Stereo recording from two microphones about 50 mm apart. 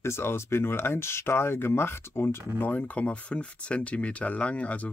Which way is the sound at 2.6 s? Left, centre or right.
Left.